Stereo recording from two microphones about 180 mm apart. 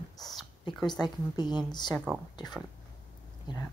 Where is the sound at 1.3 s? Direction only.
25° left (ahead or behind).